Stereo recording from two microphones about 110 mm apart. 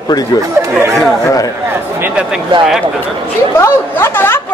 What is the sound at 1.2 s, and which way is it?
Speech, 30° left (ahead or behind).